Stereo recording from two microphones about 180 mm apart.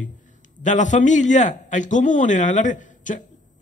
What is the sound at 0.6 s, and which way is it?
A man's voice, 45° left (ahead or behind).